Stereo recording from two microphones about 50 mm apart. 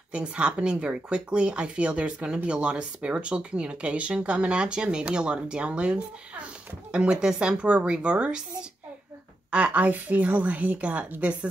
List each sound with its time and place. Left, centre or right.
0.1 s speech: right
9.5 s speech: right